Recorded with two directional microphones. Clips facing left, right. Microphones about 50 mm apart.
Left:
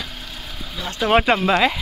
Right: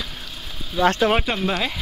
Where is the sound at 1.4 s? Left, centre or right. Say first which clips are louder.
Left 6 dB; left.